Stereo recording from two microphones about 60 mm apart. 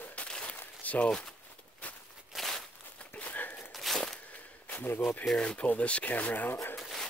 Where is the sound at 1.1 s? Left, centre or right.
Centre.